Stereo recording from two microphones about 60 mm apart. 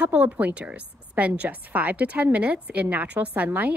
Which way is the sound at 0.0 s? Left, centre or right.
Right.